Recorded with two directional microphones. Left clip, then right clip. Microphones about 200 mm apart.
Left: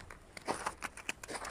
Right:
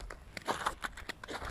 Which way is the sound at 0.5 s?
5° left (ahead or behind).